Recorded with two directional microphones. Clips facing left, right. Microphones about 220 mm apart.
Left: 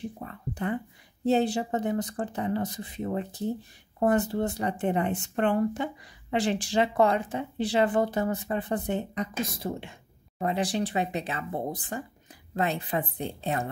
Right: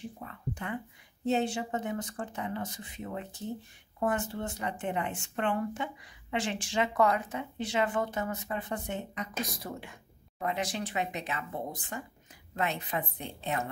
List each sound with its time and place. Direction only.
0.2 s speech: 35° left (ahead or behind)